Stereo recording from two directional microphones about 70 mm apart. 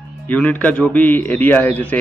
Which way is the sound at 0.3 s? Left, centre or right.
Left.